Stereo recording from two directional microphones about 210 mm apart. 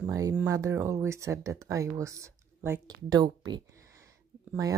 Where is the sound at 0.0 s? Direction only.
15° right (ahead or behind).